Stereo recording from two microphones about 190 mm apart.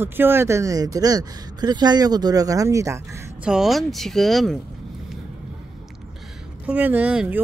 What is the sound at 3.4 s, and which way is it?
Speech, 5° right (ahead or behind).